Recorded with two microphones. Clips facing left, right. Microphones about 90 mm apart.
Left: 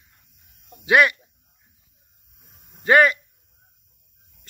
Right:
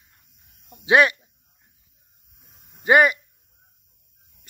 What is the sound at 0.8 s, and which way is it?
Speech, 25° right (ahead or behind).